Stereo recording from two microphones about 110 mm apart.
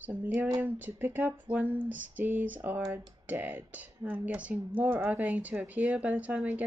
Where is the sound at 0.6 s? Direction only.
20° right (ahead or behind).